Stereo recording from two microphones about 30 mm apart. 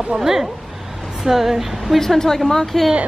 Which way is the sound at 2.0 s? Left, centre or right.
Centre.